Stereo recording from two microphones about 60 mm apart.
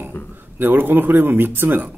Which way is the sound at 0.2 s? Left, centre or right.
Left.